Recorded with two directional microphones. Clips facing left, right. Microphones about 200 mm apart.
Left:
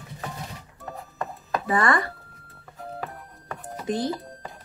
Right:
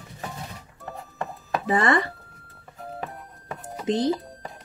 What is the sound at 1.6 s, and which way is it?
Speech, 25° right (ahead or behind).